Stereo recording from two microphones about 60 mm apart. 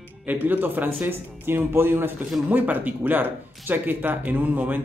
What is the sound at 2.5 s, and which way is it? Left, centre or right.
Speech, right.